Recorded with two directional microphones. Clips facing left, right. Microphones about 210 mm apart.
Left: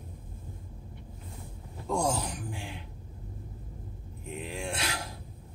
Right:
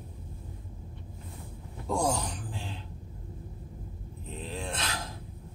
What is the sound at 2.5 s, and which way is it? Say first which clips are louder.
Cough: even; 15° left (ahead or behind).